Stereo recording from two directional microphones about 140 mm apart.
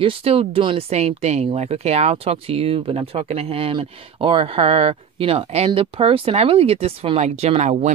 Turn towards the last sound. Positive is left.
turn(degrees=-55)  # may be behind; listen again after turning